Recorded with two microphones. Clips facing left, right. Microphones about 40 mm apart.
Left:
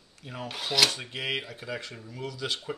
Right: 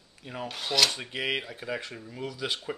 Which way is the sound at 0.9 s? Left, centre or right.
Centre.